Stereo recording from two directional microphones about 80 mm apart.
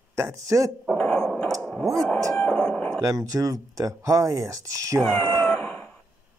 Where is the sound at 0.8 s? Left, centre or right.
Centre.